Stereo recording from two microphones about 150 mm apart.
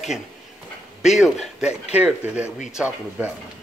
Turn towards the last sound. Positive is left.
turn(degrees=-5)  # may be behind; listen again after turning